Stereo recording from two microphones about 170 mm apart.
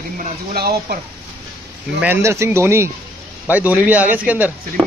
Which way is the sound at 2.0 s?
15° right (ahead or behind).